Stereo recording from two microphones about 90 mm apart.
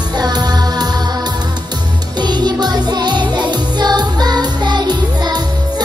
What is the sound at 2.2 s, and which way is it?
Music, 50° right (ahead or behind).